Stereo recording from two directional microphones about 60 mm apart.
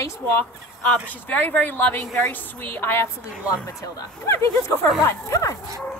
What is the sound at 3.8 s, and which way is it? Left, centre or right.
Speech, left.